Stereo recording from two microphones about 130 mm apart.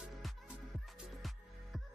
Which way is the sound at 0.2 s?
Centre (ahead or behind).